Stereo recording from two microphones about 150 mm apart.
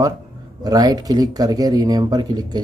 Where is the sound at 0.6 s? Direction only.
25° right (ahead or behind).